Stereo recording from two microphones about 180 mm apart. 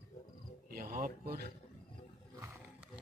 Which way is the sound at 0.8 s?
50° right (ahead or behind).